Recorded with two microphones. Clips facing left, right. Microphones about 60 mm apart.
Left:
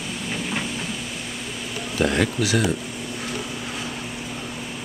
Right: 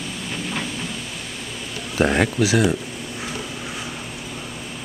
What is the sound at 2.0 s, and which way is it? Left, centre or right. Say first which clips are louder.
Speech: right 3 dB; right.